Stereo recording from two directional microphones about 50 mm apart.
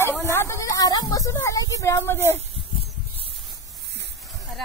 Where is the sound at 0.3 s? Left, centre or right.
Left.